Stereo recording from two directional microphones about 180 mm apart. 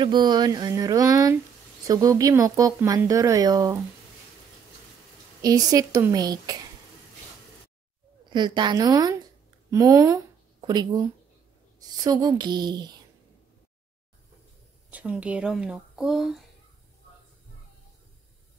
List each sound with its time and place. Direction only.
0.0 s speech: 25° right (ahead or behind)
5.4 s speech: 20° right (ahead or behind)
8.3 s speech: 25° right (ahead or behind)
14.9 s speech: 5° right (ahead or behind)